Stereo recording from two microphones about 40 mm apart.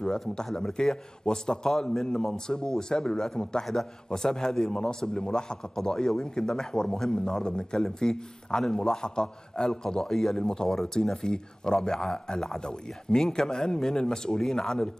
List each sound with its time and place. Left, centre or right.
0.0 s a man's voice: centre